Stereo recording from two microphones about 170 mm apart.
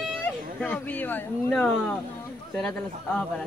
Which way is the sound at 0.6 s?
10° left (ahead or behind).